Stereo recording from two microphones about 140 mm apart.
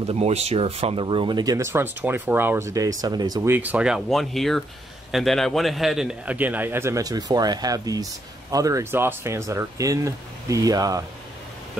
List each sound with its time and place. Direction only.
0.0 s a man's voice: 45° right (ahead or behind); by 3.4 s 30° right (ahead or behind)
3.4 s a man's voice: 15° right (ahead or behind)